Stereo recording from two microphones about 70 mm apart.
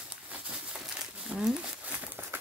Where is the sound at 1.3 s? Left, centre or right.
Centre.